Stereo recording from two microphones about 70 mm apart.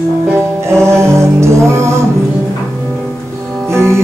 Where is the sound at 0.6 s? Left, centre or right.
Right.